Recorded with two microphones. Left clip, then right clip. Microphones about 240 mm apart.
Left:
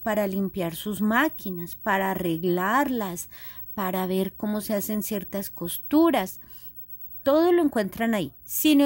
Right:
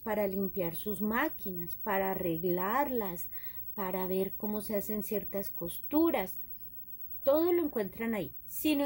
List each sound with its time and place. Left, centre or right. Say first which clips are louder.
0.0 s a woman's voice: left 7 dB; left